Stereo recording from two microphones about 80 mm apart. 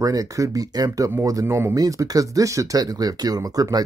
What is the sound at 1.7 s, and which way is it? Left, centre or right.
Speech, right.